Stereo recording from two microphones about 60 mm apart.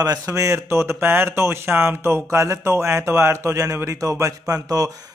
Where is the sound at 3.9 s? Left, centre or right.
Right.